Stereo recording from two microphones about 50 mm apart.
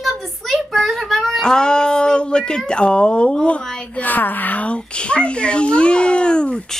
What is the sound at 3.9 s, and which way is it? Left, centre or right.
A child's voice, left.